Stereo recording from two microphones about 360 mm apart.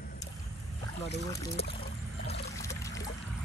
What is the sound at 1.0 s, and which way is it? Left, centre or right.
Speech, left.